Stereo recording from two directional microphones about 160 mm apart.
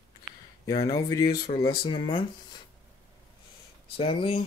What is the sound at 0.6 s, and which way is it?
Speech, 25° left (ahead or behind).